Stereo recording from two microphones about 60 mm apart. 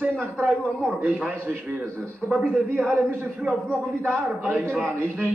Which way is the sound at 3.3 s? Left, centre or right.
Centre.